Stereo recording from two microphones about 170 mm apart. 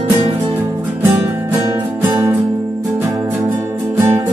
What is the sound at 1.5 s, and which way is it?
Music, 15° right (ahead or behind).